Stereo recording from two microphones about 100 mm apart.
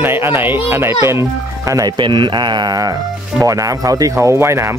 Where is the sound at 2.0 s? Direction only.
50° right (ahead or behind); by 4.7 s 25° right (ahead or behind).